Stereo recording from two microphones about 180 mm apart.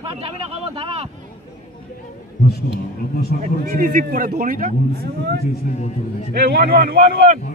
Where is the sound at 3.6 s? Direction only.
55° right (ahead or behind).